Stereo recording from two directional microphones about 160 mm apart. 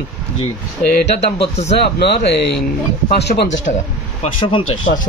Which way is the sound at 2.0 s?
90° left.